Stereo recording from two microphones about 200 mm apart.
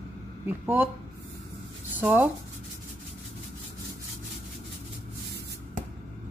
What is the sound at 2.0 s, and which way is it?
Speech, 10° right (ahead or behind).